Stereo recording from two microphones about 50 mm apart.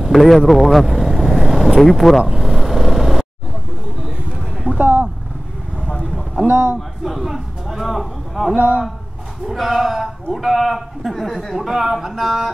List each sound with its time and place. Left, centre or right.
0.1 s vehicle: centre
1.8 s speech: centre
2.2 s vehicle: centre
4.7 s vehicle: right
5.9 s vehicle: centre
6.4 s speech: right
7.1 s a sound: centre
8.5 s a man's voice: right
9.5 s speech: centre